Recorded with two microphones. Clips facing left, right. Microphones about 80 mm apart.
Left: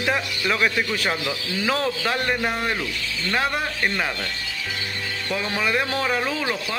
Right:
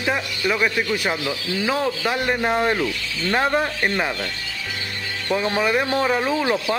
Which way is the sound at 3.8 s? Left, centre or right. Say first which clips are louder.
Right 2 dB; centre.